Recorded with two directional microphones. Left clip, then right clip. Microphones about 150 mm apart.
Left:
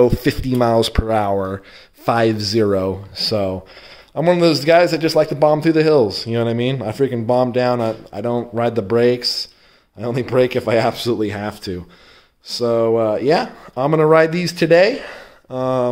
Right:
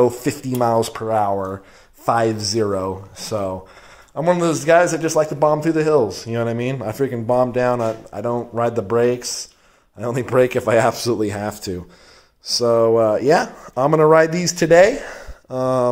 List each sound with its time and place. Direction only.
0.0 s a man's voice: 40° left (ahead or behind)
2.5 s speech: 65° left (ahead or behind)
4.1 s speech: 55° left (ahead or behind)
5.1 s speech: 70° left (ahead or behind)
5.4 s a man's voice: 40° left (ahead or behind)
9.9 s speech: 15° left (ahead or behind)